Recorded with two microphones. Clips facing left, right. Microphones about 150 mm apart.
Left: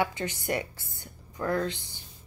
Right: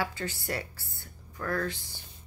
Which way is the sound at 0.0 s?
20° left (ahead or behind).